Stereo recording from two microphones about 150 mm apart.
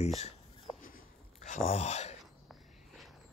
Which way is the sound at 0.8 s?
60° left (ahead or behind).